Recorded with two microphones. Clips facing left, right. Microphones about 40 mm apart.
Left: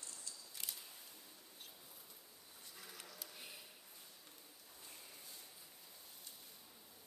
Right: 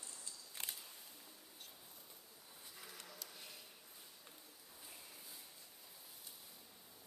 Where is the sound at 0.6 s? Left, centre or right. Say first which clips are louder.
Right 2 dB; right.